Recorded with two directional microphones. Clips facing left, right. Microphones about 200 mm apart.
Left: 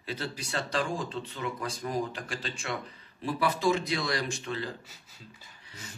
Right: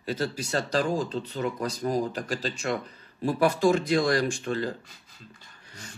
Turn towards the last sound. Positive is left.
turn(degrees=5)  # may be behind; listen again after turning